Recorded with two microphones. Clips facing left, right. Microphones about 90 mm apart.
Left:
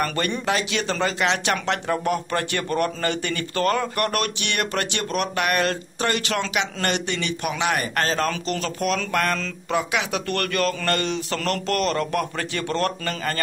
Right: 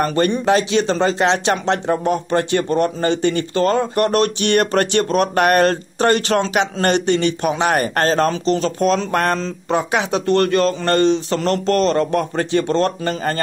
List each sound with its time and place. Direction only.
0.0 s speech: 25° right (ahead or behind)
8.3 s a man's voice: 30° right (ahead or behind)